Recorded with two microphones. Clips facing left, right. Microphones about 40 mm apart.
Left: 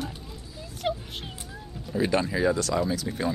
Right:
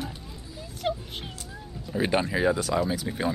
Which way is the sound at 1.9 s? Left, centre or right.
Right.